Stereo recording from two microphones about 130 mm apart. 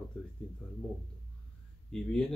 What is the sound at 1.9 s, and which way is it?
Speech, 5° left (ahead or behind).